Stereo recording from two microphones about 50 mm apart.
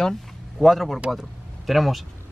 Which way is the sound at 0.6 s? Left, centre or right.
Centre.